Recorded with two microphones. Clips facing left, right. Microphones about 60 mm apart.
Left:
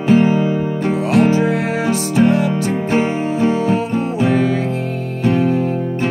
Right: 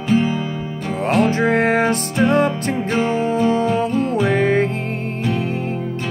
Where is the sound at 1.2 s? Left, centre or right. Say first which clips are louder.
Even; right.